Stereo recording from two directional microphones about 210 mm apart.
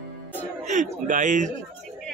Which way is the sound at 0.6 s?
35° right (ahead or behind).